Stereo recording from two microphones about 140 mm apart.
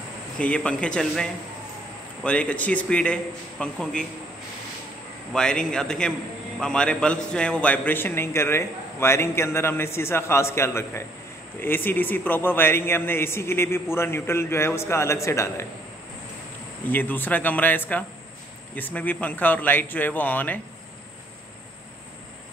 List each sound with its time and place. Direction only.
0.4 s a man's voice: 10° left (ahead or behind)
5.3 s a man's voice: 5° left (ahead or behind)
16.8 s a man's voice: 15° left (ahead or behind)